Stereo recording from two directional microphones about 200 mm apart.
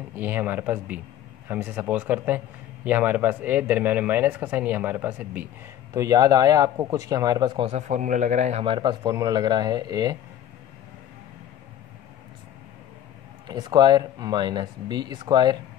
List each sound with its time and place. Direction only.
0.1 s a man's voice: 10° right (ahead or behind)
13.5 s speech: 20° right (ahead or behind)